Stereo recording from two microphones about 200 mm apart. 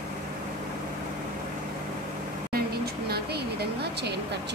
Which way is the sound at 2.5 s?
50° right (ahead or behind).